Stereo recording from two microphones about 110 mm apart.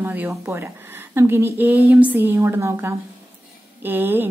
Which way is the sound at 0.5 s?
25° right (ahead or behind).